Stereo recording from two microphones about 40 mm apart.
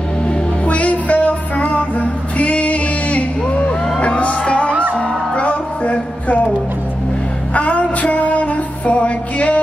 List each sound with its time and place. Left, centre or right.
0.3 s music: left
7.5 s music: left